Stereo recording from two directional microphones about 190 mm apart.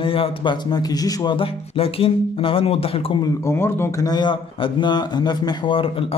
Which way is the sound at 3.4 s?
15° left (ahead or behind).